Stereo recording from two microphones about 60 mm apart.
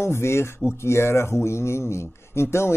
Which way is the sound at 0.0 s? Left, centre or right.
Left.